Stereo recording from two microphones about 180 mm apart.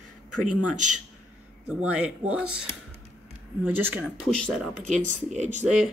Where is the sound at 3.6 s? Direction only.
10° right (ahead or behind).